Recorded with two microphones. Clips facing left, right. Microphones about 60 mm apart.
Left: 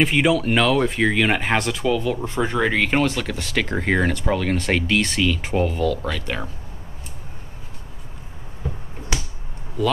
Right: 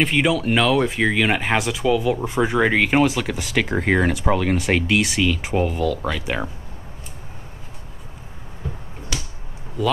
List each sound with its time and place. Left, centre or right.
0.0 s speech: centre
9.1 s finger snapping: left